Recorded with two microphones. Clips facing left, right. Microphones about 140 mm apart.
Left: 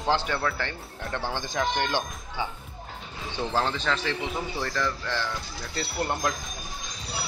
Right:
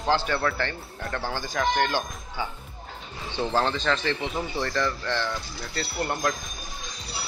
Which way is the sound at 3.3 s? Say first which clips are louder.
Right 2 dB; 5° left (ahead or behind).